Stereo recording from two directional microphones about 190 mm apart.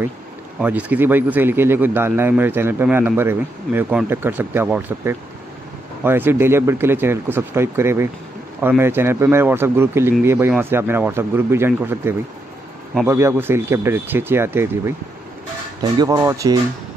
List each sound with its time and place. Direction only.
0.6 s a man's voice: 5° right (ahead or behind)